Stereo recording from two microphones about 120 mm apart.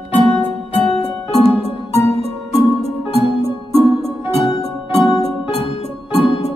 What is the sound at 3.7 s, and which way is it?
Music, 55° right (ahead or behind).